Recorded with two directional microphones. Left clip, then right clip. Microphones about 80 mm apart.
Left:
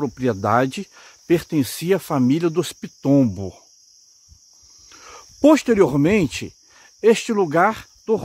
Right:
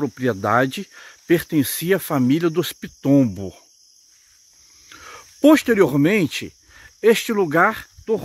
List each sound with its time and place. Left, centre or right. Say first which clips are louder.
0.0 s speech: even; left
4.8 s speech: right 2 dB; left
6.8 s speech: even; left
8.1 s speech: left 1 dB; left